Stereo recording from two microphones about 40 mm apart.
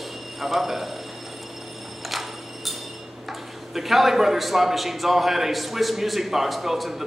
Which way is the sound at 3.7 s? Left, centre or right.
Centre.